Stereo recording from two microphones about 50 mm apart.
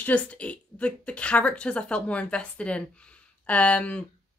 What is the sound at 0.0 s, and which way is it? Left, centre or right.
A woman's voice, left.